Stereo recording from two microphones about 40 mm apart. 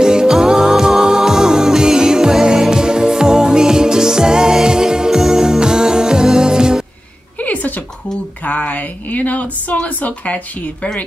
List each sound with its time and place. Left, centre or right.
0.0 s music: centre
7.3 s a sound: left
8.5 s speech: left